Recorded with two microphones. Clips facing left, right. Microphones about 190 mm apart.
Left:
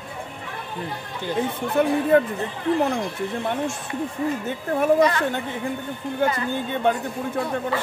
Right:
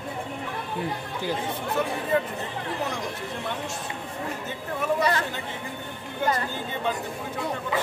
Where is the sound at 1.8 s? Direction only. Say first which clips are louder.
Left 8 dB; 55° left (ahead or behind).